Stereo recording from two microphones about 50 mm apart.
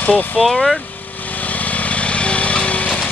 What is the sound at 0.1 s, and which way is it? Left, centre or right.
Speech, centre.